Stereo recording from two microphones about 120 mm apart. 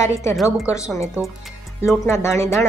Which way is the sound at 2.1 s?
25° left (ahead or behind).